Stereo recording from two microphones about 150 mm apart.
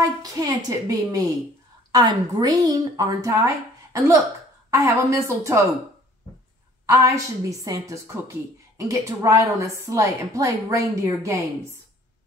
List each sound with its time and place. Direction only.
0.0 s a woman's voice: 25° right (ahead or behind)
6.9 s speech: 20° right (ahead or behind)